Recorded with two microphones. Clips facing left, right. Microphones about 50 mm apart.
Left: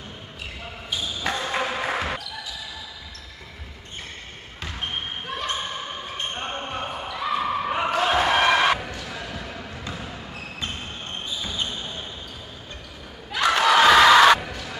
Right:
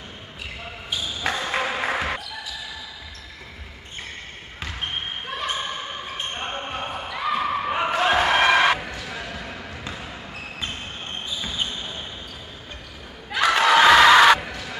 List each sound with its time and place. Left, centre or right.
0.8 s basketball bounce: centre
4.6 s basketball bounce: centre
8.6 s a sound: centre
9.0 s basketball bounce: centre
13.4 s crowd: centre
14.4 s a sound: centre